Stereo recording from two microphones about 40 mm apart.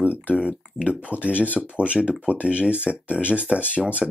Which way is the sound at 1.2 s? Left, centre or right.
Right.